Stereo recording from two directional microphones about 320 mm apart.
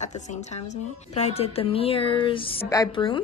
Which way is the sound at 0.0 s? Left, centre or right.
Left.